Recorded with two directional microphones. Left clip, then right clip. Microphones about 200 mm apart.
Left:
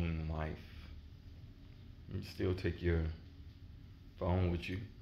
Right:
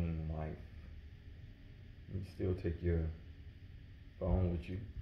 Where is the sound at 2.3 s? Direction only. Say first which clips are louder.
Left 2 dB; 15° left (ahead or behind).